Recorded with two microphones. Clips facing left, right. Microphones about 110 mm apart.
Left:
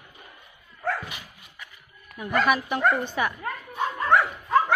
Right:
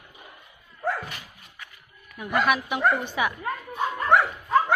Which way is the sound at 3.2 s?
5° right (ahead or behind).